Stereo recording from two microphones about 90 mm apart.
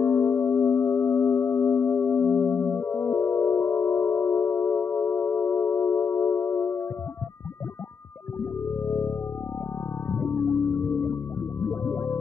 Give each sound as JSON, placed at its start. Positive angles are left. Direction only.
{"t": 0.0, "sound": "singing bowl", "side_deg": 25}
{"t": 8.4, "sound": "music", "side_deg": 25}